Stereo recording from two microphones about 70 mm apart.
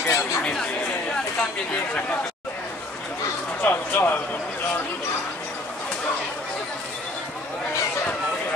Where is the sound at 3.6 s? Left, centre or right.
Left.